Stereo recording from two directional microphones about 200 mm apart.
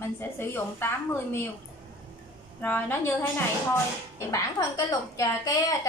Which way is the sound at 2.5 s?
10° left (ahead or behind).